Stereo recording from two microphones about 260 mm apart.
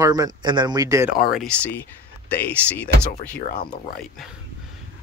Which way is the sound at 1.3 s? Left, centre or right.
Centre.